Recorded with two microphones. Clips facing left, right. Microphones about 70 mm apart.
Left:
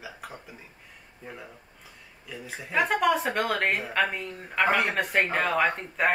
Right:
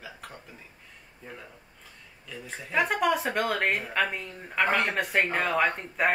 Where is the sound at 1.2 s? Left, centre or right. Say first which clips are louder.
Left 2 dB; centre.